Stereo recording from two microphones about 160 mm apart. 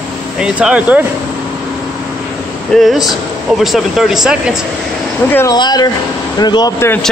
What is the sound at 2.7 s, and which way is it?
Speech, centre (ahead or behind).